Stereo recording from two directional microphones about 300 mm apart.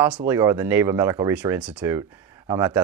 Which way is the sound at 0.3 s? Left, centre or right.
Centre.